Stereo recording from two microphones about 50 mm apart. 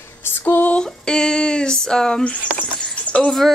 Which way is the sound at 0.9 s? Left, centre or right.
Centre.